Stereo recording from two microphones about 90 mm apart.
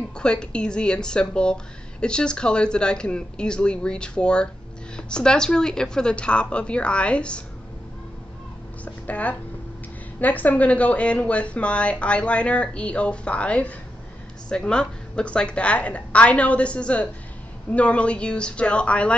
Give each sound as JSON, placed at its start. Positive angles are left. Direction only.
{"t": 0.1, "sound": "speech", "side_deg": 10}
{"t": 8.8, "sound": "a sound", "side_deg": 15}
{"t": 10.2, "sound": "speech", "side_deg": 20}